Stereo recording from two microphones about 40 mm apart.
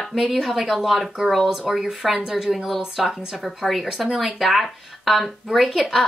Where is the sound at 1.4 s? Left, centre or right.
Centre.